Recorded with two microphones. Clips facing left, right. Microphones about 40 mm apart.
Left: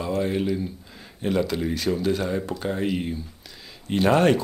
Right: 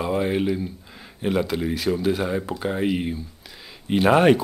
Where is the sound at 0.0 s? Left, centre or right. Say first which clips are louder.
Right 2 dB; right.